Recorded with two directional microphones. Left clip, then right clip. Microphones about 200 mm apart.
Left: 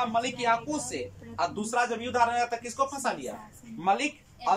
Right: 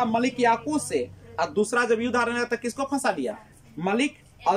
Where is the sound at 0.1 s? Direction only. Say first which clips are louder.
Right 4 dB; 40° right (ahead or behind).